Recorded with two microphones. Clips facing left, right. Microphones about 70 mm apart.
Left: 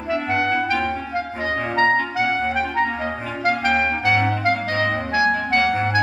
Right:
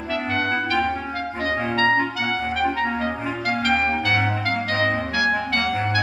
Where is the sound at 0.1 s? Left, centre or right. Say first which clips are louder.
Left 3 dB; left.